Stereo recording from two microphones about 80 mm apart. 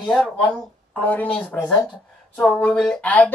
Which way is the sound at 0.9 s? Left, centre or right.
Centre.